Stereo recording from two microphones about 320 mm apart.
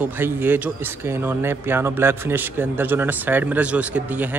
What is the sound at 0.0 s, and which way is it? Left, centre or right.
Speech, centre.